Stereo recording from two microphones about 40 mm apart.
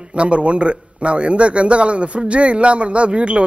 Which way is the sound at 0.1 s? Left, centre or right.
Right.